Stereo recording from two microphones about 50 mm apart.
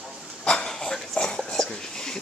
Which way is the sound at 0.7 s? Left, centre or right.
Centre.